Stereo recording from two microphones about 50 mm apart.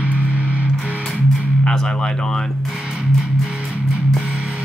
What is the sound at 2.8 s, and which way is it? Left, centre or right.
Music, centre.